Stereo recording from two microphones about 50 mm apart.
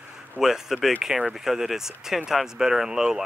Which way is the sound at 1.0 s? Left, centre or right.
Centre.